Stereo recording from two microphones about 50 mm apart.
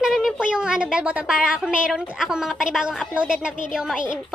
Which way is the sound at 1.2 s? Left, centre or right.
Centre.